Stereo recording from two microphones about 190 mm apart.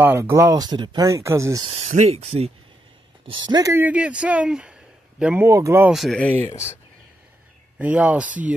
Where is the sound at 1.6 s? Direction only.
35° right (ahead or behind); by 5.9 s 15° right (ahead or behind).